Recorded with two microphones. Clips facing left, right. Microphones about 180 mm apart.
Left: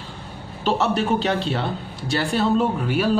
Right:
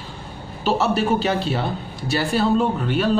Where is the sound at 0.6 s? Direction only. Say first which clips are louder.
Right 1 dB; 5° right (ahead or behind).